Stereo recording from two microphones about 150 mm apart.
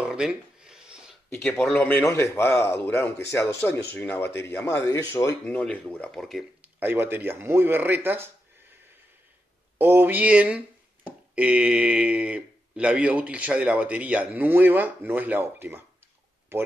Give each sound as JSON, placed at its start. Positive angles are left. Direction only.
{"t": 0.0, "sound": "a sound", "side_deg": -5}
{"t": 1.3, "sound": "speech", "side_deg": 5}
{"t": 5.4, "sound": "speech", "side_deg": 10}
{"t": 6.6, "sound": "speech", "side_deg": -15}
{"t": 9.8, "sound": "speech", "side_deg": -15}